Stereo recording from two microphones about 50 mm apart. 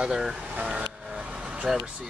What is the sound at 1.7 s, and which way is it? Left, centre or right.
Speech, centre.